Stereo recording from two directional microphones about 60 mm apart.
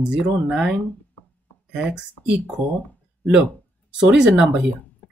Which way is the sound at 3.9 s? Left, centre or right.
Centre.